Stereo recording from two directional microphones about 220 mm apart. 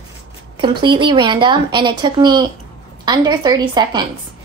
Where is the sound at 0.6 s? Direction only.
20° right (ahead or behind).